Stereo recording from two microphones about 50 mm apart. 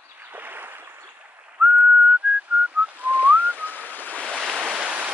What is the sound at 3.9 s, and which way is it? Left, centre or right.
Waves, left.